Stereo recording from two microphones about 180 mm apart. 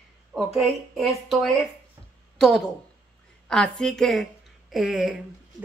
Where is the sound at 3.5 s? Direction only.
5° left (ahead or behind).